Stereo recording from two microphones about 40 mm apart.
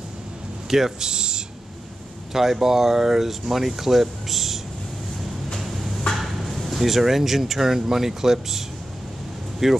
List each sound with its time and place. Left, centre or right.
0.7 s speech: centre
5.6 s a sound: centre
6.1 s speech: centre